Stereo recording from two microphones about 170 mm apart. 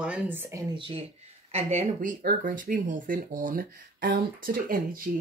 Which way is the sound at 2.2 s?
55° right (ahead or behind).